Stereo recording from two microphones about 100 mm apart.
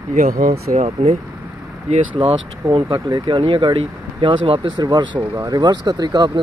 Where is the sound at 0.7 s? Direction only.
90° right.